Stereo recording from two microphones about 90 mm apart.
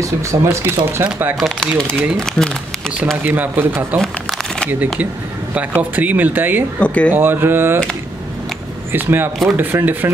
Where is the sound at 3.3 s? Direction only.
20° right (ahead or behind).